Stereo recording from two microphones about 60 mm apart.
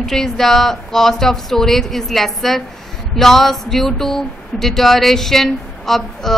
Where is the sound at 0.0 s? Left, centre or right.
Centre.